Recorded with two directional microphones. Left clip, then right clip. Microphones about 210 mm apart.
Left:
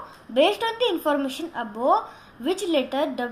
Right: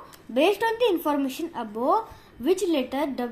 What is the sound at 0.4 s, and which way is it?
A woman's voice, 35° right (ahead or behind).